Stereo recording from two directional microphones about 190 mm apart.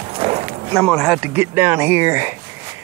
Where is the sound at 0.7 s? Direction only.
5° left (ahead or behind).